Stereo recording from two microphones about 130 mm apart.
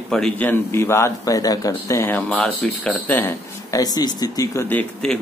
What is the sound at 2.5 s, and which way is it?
Speech, centre (ahead or behind).